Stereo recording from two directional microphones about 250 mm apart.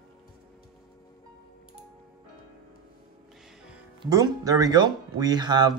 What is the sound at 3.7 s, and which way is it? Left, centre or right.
Speech, centre.